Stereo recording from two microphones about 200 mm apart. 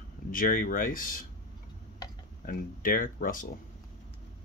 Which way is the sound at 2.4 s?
45° left (ahead or behind).